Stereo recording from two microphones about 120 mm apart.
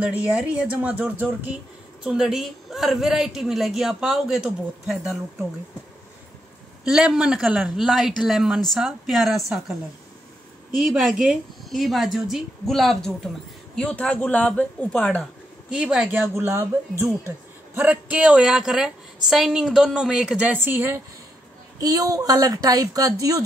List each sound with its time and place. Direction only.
0.0 s speech: 10° right (ahead or behind)
2.0 s a woman's voice: 5° right (ahead or behind)
6.8 s a woman's voice: 5° right (ahead or behind)
10.8 s a woman's voice: centre (ahead or behind)
15.7 s speech: 10° right (ahead or behind)
16.3 s a woman's voice: 20° right (ahead or behind)
21.7 s a woman's voice: 30° right (ahead or behind)